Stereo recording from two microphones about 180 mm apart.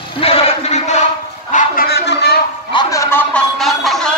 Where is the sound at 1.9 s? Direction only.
65° left (ahead or behind).